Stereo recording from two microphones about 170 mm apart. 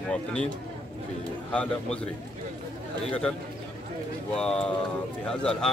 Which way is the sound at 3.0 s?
5° left (ahead or behind).